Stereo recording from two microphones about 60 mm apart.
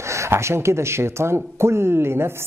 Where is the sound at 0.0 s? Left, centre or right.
Right.